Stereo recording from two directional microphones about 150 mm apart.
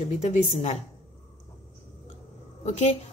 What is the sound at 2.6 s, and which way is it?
Speech, 50° left (ahead or behind).